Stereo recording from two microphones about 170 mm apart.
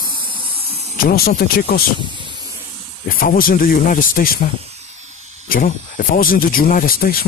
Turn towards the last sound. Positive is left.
turn(degrees=60)  # may be behind; listen again after turning